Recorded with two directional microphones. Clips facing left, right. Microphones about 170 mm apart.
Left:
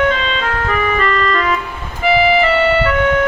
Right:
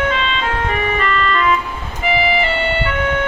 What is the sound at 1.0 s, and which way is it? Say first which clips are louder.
Organ: left 2 dB; 40° left (ahead or behind).